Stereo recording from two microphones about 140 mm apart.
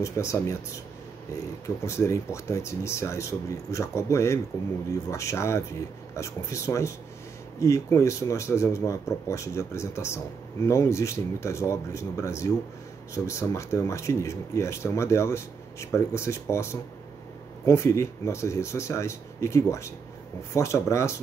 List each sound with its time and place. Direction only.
0.0 s speech: 20° left (ahead or behind)
1.9 s speech: 20° left (ahead or behind)